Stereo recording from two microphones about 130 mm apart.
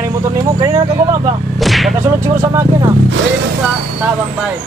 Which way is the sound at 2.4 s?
25° right (ahead or behind).